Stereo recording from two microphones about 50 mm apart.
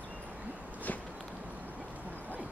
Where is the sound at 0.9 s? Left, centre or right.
Left.